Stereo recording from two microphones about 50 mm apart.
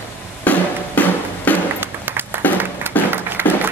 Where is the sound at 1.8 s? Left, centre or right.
Right.